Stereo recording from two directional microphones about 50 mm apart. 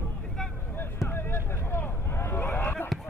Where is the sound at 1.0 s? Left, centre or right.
Left.